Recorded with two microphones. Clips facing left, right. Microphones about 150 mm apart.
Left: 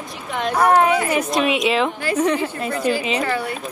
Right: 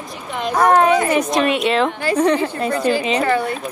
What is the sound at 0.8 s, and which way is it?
Speech, 35° right (ahead or behind).